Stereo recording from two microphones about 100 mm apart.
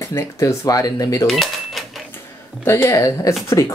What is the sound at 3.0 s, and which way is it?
Speech, 35° left (ahead or behind).